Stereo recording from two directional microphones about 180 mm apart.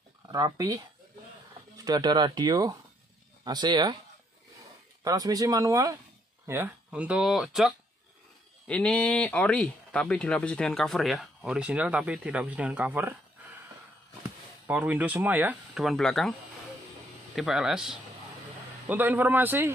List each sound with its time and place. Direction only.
0.3 s speech: 20° right (ahead or behind)
1.9 s speech: 25° right (ahead or behind)
5.0 s speech: 20° right (ahead or behind)
14.7 s speech: 10° right (ahead or behind)
17.4 s speech: centre (ahead or behind)